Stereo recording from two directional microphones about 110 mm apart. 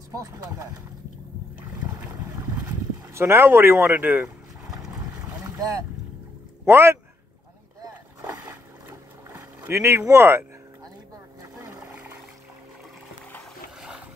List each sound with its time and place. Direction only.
3.1 s speech: 25° right (ahead or behind)
5.5 s speech: 30° right (ahead or behind)
8.5 s boat: 20° right (ahead or behind)
13.7 s boat: 5° right (ahead or behind)